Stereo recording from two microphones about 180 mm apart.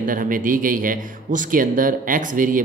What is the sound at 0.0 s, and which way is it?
Speech, 50° right (ahead or behind).